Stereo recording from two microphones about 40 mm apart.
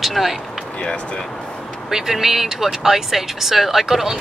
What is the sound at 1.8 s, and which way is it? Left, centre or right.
Speech, centre.